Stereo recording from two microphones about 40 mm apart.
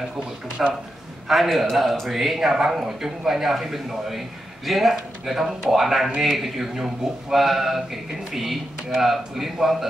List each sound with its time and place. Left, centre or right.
0.6 s speech: centre